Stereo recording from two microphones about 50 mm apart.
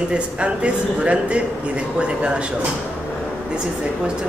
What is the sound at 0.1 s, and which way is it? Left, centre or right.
A man's voice, right.